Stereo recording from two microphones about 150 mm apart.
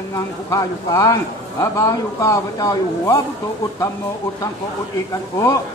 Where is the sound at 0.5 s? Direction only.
20° left (ahead or behind).